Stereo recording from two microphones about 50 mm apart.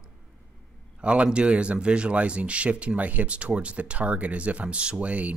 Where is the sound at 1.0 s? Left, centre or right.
Right.